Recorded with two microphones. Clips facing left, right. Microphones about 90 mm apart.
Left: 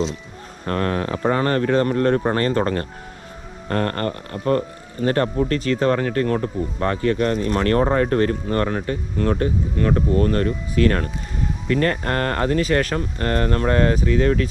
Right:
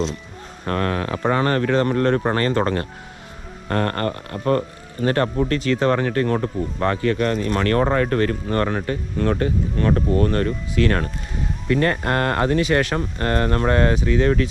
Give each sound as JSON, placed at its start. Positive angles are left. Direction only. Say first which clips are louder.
{"t": 0.7, "sound": "speech", "louder": "even", "side_deg": -50}
{"t": 5.5, "sound": "speech", "louder": "even", "side_deg": 40}
{"t": 5.8, "sound": "speech", "louder": "even", "side_deg": -40}
{"t": 7.0, "sound": "speech", "louder": "left 1 dB", "side_deg": 35}
{"t": 7.8, "sound": "speech", "louder": "left 1 dB", "side_deg": -65}
{"t": 8.1, "sound": "speech", "louder": "left 1 dB", "side_deg": 35}
{"t": 8.5, "sound": "speech", "louder": "right 2 dB", "side_deg": -50}
{"t": 10.8, "sound": "speech", "louder": "left 2 dB", "side_deg": 40}
{"t": 11.6, "sound": "speech", "louder": "right 1 dB", "side_deg": -35}